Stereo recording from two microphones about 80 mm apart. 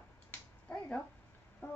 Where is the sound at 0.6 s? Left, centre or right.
Centre.